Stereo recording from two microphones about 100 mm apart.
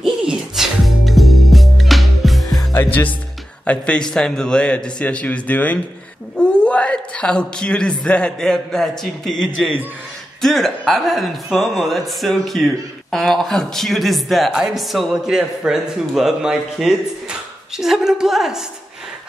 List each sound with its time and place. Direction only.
0.0 s music: 5° right (ahead or behind)
2.7 s a woman's voice: 20° left (ahead or behind); by 18.6 s 5° right (ahead or behind)